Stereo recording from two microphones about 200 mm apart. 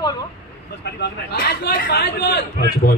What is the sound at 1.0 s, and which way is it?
A man's voice, 55° left (ahead or behind).